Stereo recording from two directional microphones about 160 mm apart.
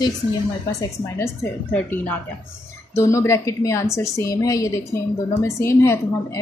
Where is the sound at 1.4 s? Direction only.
10° left (ahead or behind).